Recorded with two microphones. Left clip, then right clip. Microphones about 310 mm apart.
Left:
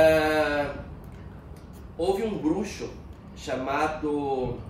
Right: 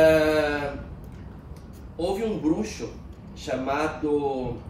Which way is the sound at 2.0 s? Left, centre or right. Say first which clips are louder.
Even; centre.